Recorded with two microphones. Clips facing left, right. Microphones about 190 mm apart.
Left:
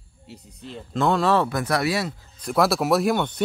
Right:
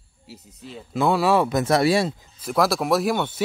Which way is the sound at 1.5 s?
25° right (ahead or behind).